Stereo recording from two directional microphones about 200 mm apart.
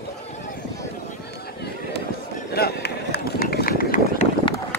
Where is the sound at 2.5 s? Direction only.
50° left (ahead or behind).